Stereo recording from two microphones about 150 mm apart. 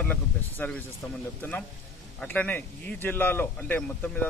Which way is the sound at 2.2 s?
10° left (ahead or behind).